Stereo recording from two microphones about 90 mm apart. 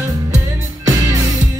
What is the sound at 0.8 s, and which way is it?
Music, 40° right (ahead or behind).